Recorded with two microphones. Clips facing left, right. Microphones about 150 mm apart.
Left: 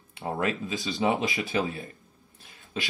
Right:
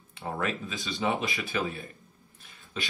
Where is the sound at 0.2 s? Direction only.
20° left (ahead or behind).